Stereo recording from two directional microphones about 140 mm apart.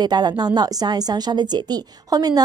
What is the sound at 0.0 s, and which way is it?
A woman's voice, 30° right (ahead or behind).